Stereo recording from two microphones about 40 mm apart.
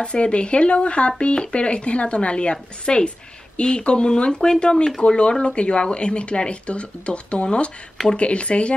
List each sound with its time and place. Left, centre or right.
0.0 s speech: left
5.0 s speech: left